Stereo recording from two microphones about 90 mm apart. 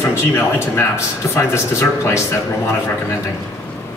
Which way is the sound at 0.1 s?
25° left (ahead or behind).